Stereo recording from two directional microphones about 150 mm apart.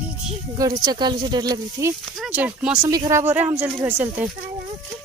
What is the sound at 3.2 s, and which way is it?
Speech, 10° right (ahead or behind).